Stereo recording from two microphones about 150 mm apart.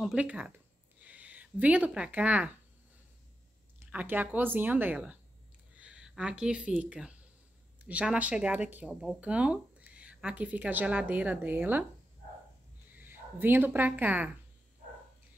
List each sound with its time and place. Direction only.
0.0 s speech: 5° right (ahead or behind)
3.8 s speech: 10° right (ahead or behind)
13.0 s speech: 15° right (ahead or behind)